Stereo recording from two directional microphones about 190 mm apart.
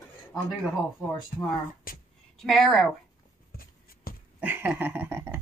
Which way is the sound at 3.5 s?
50° left (ahead or behind).